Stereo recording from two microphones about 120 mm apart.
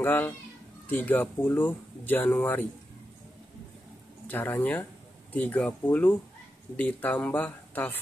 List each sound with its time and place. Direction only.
0.0 s a child's voice: 15° left (ahead or behind)
4.3 s speech: 15° left (ahead or behind)